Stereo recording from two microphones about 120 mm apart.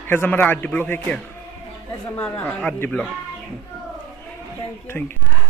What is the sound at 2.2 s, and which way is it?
Speech, 10° left (ahead or behind).